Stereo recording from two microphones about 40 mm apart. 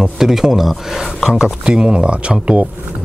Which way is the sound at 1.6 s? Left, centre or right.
Right.